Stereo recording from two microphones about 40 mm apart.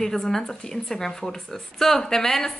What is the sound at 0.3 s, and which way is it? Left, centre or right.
Speech, centre.